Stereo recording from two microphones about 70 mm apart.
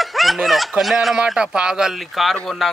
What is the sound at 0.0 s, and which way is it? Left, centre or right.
Speech, centre.